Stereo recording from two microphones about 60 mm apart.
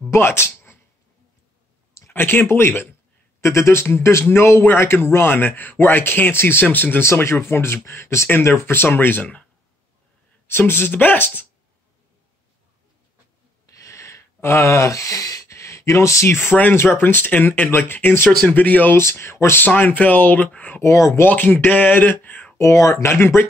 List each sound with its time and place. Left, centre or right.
0.1 s a sound: left
2.1 s speech: left
3.3 s speech: left
7.1 s speech: left
10.4 s speech: left
13.7 s a sound: left
16.7 s speech: left
18.9 s speech: left
19.6 s speech: left
20.8 s speech: left
21.2 s speech: left
21.6 s a sound: left
22.6 s speech: left
23.1 s speech: left